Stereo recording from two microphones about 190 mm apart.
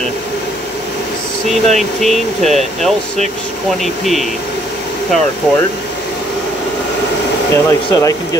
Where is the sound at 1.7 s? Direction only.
Centre (ahead or behind).